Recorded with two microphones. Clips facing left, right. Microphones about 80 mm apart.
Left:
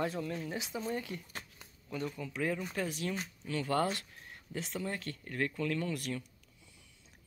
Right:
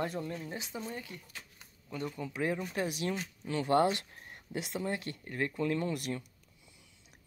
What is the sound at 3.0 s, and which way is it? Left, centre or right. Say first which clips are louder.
Speech: right 2 dB; right.